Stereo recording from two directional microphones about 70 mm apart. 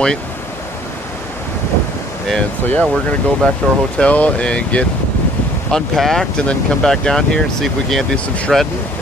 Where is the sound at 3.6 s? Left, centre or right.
Left.